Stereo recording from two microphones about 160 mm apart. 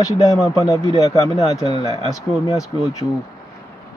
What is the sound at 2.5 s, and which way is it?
Speech, 20° left (ahead or behind).